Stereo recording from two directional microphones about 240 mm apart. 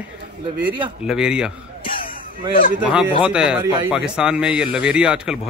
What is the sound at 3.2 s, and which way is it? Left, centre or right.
Speech, centre.